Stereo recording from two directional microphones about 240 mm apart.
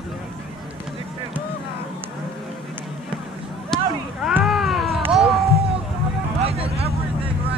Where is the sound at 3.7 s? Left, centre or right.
Centre.